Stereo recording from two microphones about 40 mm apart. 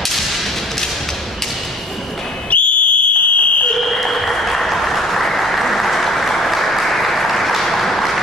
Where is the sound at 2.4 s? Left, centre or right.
Left.